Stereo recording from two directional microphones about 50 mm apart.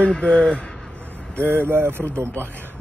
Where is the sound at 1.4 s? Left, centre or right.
Right.